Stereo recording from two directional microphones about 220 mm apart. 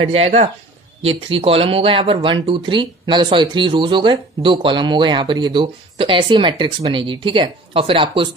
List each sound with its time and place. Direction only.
0.0 s speech: 25° right (ahead or behind)